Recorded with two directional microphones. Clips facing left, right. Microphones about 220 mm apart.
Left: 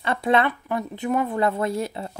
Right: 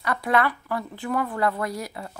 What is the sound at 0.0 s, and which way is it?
Speech, 25° left (ahead or behind).